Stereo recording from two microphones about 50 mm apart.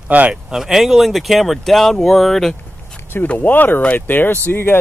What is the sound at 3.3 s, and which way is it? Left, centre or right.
Speech, left.